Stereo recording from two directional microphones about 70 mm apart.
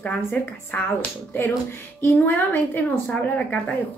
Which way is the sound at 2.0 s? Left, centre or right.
Left.